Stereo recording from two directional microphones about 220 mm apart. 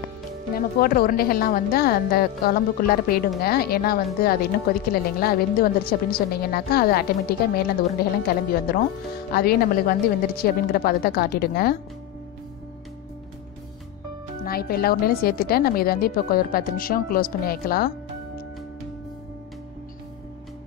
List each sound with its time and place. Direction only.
0.6 s speech: 40° left (ahead or behind)
14.4 s speech: 45° left (ahead or behind)